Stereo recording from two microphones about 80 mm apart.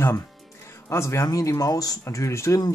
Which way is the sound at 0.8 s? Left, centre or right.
Left.